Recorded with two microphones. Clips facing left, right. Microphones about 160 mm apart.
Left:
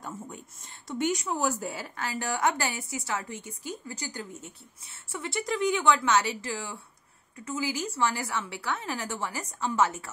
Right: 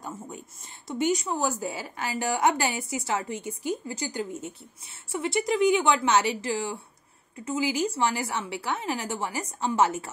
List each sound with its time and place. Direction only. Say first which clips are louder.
0.8 s a woman's voice: right 3 dB; 5° right (ahead or behind)